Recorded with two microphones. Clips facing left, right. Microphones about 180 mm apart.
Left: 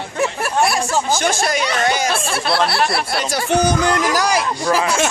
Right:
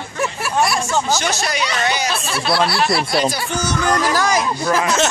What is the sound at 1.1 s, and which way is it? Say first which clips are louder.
Speech: left 3 dB; 50° left (ahead or behind).